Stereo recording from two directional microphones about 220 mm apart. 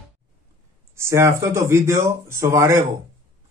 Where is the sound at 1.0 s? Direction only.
10° right (ahead or behind).